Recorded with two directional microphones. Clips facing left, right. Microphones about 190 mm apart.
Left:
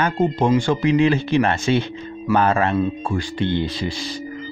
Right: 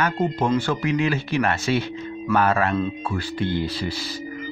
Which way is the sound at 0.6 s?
25° left (ahead or behind).